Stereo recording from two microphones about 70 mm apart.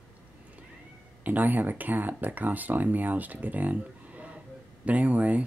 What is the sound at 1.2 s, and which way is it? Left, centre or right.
Speech, right.